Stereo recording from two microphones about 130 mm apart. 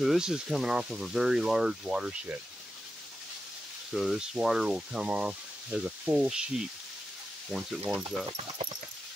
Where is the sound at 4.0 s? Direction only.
5° right (ahead or behind).